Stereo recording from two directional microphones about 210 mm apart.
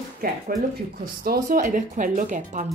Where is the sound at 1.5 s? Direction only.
40° right (ahead or behind).